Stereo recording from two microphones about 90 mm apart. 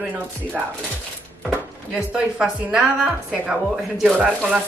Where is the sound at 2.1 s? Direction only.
5° right (ahead or behind).